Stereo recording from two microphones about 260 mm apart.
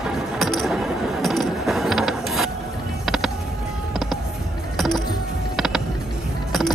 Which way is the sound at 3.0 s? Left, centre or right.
Centre.